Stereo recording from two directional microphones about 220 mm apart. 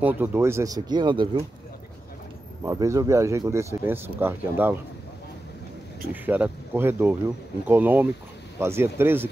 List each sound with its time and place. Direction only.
0.0 s speech: 10° right (ahead or behind)
2.6 s speech: 15° right (ahead or behind)
6.2 s speech: 10° right (ahead or behind)